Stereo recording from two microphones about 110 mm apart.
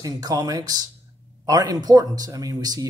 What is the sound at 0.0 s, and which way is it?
Speech, 35° right (ahead or behind).